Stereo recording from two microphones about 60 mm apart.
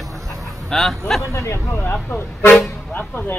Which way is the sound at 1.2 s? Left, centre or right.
Left.